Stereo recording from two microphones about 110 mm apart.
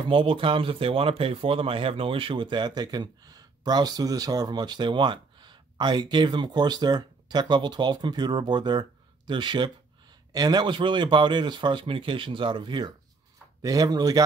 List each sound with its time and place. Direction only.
0.0 s speech: 55° right (ahead or behind)
13.6 s speech: 35° right (ahead or behind)